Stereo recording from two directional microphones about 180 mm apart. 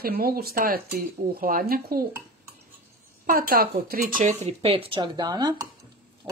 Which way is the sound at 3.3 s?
55° right (ahead or behind).